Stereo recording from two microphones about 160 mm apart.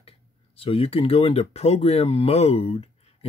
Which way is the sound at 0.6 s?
35° left (ahead or behind).